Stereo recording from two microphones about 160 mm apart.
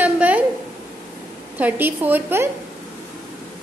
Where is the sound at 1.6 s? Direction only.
10° right (ahead or behind).